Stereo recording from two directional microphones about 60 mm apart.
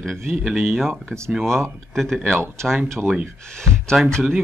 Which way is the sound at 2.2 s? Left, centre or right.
Right.